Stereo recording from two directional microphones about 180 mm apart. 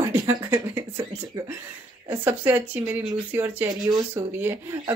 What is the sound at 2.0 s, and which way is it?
A woman's voice, 10° right (ahead or behind).